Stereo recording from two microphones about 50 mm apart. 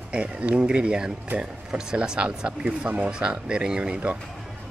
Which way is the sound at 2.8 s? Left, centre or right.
Right.